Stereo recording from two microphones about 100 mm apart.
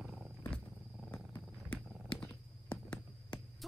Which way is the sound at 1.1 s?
15° left (ahead or behind).